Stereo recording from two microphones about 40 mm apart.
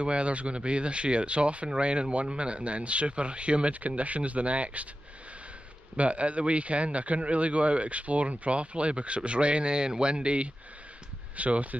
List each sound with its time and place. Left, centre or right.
0.0 s a man's voice: right
5.9 s a man's voice: right